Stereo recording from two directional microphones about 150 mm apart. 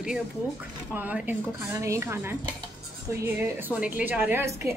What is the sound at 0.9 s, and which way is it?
A woman's voice, 10° right (ahead or behind).